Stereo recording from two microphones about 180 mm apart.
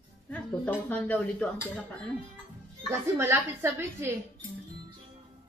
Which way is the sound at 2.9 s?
15° right (ahead or behind).